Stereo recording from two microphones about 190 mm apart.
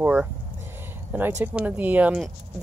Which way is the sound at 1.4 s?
10° right (ahead or behind).